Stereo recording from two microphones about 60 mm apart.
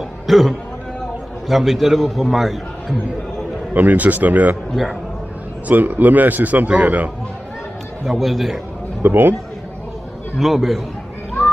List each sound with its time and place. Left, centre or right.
0.3 s a man's voice: centre
3.7 s a man's voice: right
5.7 s a man's voice: right
8.0 s a man's voice: centre
9.0 s a man's voice: right
10.4 s a man's voice: centre